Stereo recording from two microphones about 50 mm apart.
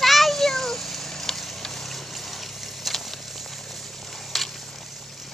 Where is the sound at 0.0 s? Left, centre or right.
Centre.